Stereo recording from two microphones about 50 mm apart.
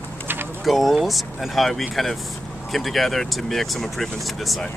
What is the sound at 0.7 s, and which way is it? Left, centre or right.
Speech, centre.